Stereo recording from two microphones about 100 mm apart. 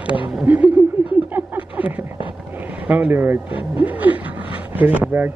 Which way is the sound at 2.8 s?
15° right (ahead or behind).